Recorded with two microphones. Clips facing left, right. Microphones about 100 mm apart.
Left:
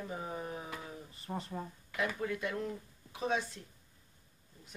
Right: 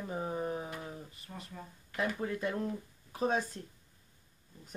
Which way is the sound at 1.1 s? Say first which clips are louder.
Left 7 dB; 30° left (ahead or behind).